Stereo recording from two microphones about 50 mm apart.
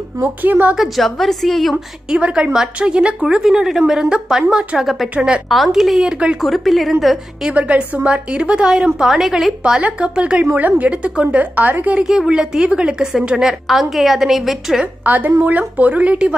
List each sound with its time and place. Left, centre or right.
0.2 s a woman's voice: right
0.7 s a woman's voice: centre
2.1 s a woman's voice: right; by 5.1 s centre
5.1 s a woman's voice: centre
5.5 s a woman's voice: centre
6.0 s a woman's voice: centre
6.4 s a woman's voice: centre
7.5 s a woman's voice: right
8.8 s a woman's voice: centre
9.6 s a woman's voice: right
10.4 s a woman's voice: right
12.0 s a woman's voice: centre
15.0 s a woman's voice: right